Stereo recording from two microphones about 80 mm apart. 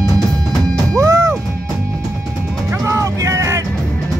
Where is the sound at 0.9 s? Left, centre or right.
Right.